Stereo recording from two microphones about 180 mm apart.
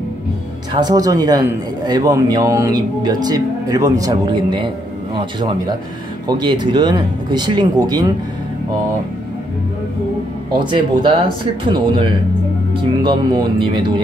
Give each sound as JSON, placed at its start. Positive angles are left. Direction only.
{"t": 0.7, "sound": "speech", "side_deg": -20}
{"t": 10.6, "sound": "speech", "side_deg": -25}